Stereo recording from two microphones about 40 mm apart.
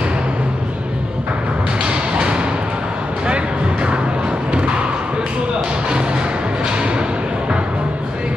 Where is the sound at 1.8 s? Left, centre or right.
Right.